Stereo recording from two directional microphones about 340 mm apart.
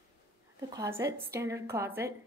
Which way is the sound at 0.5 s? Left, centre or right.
Centre.